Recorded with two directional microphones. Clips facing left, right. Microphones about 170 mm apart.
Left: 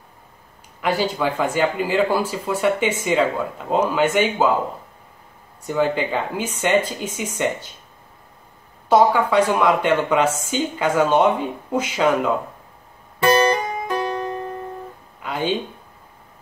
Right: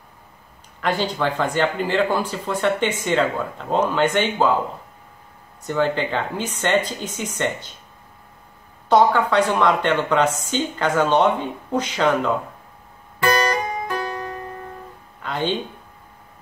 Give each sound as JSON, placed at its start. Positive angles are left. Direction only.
{"t": 0.7, "sound": "speech", "side_deg": 10}
{"t": 5.6, "sound": "speech", "side_deg": 10}
{"t": 8.8, "sound": "speech", "side_deg": 10}
{"t": 13.8, "sound": "music", "side_deg": 20}
{"t": 15.2, "sound": "a sound", "side_deg": 10}